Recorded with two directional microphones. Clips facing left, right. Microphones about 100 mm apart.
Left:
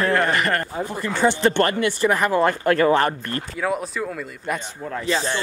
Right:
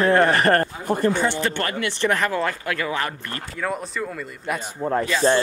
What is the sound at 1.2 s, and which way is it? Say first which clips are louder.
Speech: left 6 dB; 25° left (ahead or behind).